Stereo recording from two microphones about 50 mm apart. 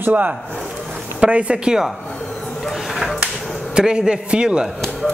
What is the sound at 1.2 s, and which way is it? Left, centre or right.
Speech, right.